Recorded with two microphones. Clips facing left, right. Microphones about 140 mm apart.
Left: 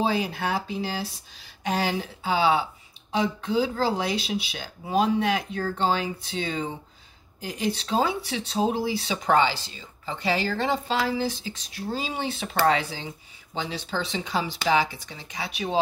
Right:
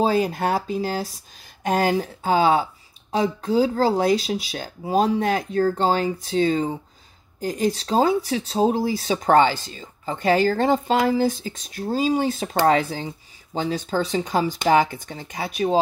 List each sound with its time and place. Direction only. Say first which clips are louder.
0.0 s speech: right 5 dB; 45° right (ahead or behind)